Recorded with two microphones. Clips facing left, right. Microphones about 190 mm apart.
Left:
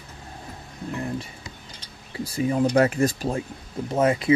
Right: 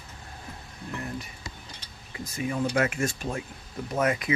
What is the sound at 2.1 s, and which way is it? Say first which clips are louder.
Speech: left 7 dB; 30° left (ahead or behind).